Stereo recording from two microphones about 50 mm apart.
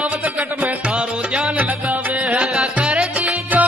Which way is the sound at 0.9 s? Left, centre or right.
Right.